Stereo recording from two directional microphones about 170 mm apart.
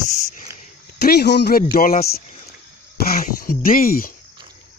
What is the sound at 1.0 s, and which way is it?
Speech, 75° left (ahead or behind).